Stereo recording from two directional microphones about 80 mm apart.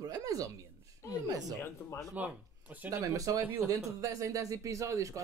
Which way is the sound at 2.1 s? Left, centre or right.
Centre.